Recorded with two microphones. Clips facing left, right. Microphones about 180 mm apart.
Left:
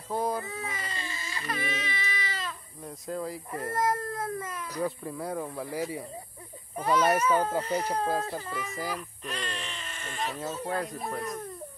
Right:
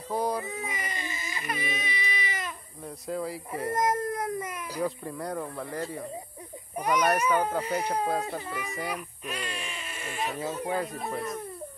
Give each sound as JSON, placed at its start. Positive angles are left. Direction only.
{"t": 0.1, "sound": "speech", "side_deg": 0}
{"t": 0.4, "sound": "baby cry", "side_deg": -15}
{"t": 2.8, "sound": "speech", "side_deg": 0}
{"t": 3.7, "sound": "a sound", "side_deg": -20}
{"t": 4.7, "sound": "speech", "side_deg": 0}
{"t": 6.7, "sound": "speech", "side_deg": -15}
{"t": 8.1, "sound": "speech", "side_deg": 0}
{"t": 8.4, "sound": "speech", "side_deg": -10}
{"t": 8.6, "sound": "speech", "side_deg": 0}